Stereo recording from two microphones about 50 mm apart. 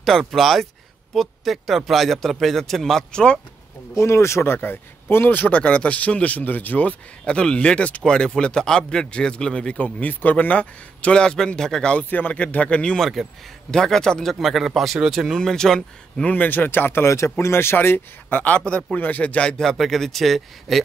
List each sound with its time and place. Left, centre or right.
0.0 s speech: centre
4.0 s speech: left
4.7 s a man's voice: left
5.6 s a man's voice: left
9.8 s a man's voice: left; by 11.9 s centre
12.1 s a man's voice: left
13.0 s speech: centre
13.7 s a man's voice: centre
14.3 s a man's voice: centre
16.3 s speech: left
17.0 s speech: left
18.9 s a man's voice: left
19.6 s speech: centre